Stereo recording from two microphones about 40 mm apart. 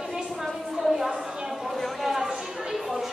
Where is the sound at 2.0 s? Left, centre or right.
Centre.